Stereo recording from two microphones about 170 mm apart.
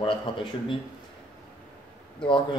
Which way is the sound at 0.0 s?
30° left (ahead or behind).